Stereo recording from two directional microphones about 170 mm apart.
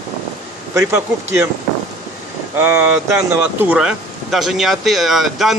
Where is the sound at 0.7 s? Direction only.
15° right (ahead or behind).